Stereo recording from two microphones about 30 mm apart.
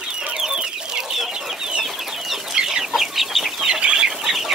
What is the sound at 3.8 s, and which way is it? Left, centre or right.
Chicken, right.